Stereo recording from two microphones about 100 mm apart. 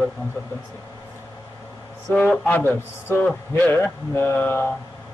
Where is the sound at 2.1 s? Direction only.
15° left (ahead or behind).